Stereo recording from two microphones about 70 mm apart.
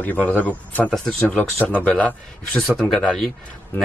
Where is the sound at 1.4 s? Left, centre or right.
Left.